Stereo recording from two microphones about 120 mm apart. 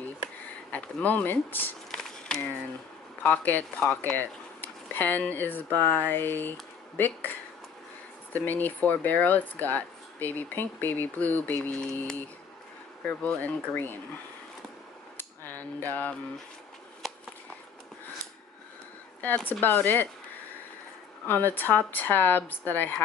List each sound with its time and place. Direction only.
0.7 s speech: 10° left (ahead or behind)
1.9 s a sound: 5° left (ahead or behind)
3.2 s speech: 15° left (ahead or behind)
15.1 s a sound: 15° left (ahead or behind)
19.2 s speech: 15° left (ahead or behind)
21.5 s speech: 15° left (ahead or behind)